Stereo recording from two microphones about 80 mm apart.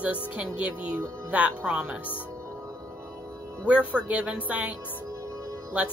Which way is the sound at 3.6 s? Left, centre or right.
Centre.